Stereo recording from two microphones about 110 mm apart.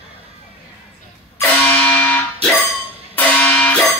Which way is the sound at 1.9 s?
10° left (ahead or behind).